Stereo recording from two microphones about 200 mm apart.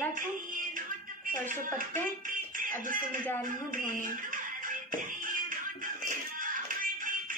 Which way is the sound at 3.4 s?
40° right (ahead or behind).